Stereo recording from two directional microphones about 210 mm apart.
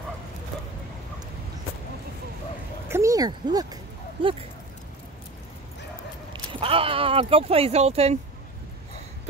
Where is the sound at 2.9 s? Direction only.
15° right (ahead or behind).